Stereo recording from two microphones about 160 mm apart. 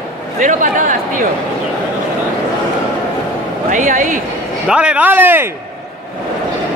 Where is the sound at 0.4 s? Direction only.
55° right (ahead or behind).